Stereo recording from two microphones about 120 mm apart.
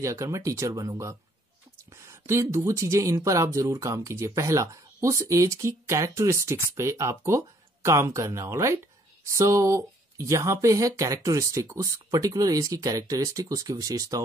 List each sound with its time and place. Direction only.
0.0 s speech: 25° right (ahead or behind)
2.0 s a sound: 25° right (ahead or behind)
2.5 s speech: 25° right (ahead or behind)